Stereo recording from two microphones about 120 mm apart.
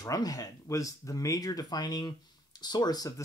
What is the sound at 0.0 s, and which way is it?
Speech, 30° left (ahead or behind).